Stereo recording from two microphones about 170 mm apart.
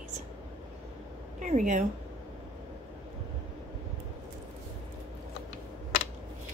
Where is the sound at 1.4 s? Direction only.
45° right (ahead or behind).